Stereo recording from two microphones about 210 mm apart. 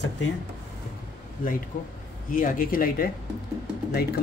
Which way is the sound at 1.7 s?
40° left (ahead or behind).